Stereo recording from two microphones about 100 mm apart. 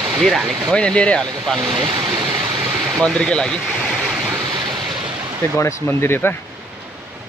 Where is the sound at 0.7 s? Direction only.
10° left (ahead or behind).